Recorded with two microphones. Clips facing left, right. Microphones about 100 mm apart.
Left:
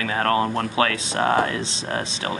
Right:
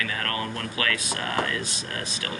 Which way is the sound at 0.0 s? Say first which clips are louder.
Left 9 dB; 30° left (ahead or behind).